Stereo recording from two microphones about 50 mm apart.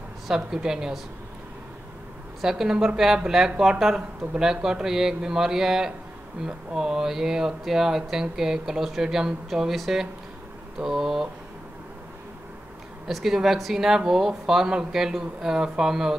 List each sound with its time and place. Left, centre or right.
0.3 s speech: centre
2.4 s speech: centre
13.0 s speech: centre